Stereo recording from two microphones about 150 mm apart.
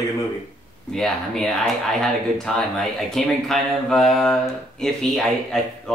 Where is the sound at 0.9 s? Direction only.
Centre (ahead or behind).